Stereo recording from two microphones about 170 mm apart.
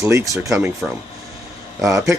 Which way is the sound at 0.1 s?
20° right (ahead or behind).